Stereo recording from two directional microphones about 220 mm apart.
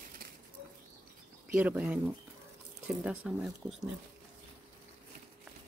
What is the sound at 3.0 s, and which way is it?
Speech, 5° right (ahead or behind).